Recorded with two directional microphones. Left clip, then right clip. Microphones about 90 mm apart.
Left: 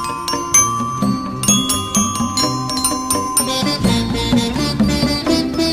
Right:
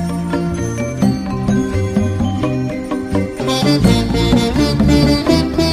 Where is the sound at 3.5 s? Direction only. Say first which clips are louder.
Right 8 dB; 25° left (ahead or behind).